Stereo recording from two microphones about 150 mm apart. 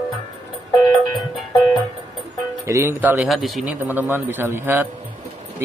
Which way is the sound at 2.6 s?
20° right (ahead or behind).